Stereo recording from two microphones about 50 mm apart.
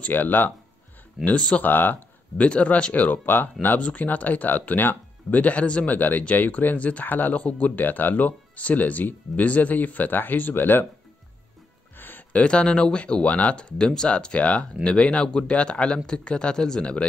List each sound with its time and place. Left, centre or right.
0.0 s speech: left
1.2 s speech: left
1.6 s speech: left
2.4 s speech: left
12.3 s speech: left